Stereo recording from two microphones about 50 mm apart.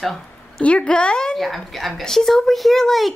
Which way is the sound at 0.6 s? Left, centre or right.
Left.